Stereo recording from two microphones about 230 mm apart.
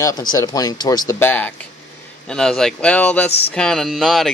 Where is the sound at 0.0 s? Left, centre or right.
Centre.